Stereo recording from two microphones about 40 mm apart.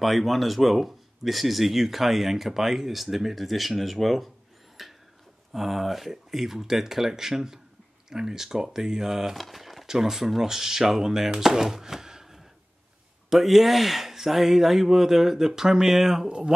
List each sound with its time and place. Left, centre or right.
0.0 s speech: centre
4.8 s a sound: centre
5.5 s speech: centre
9.8 s speech: centre
16.3 s speech: centre